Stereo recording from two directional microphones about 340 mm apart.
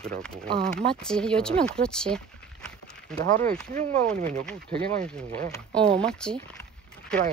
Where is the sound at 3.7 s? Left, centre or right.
Right.